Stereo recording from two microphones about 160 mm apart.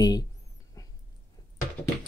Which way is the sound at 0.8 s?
25° left (ahead or behind).